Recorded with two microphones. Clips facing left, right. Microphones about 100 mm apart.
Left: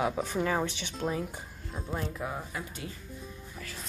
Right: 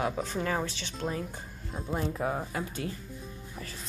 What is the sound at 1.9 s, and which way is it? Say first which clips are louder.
Speech: right 5 dB; 25° right (ahead or behind).